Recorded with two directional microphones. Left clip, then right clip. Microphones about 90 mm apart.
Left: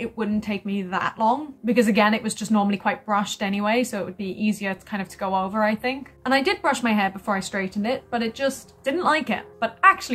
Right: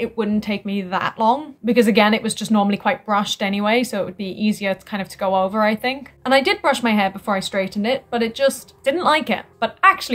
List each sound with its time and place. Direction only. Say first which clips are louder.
0.0 s a woman's voice: right 5 dB; 25° right (ahead or behind)